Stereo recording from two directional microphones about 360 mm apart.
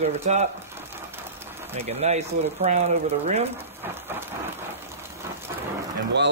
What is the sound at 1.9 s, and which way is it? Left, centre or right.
Speech, centre.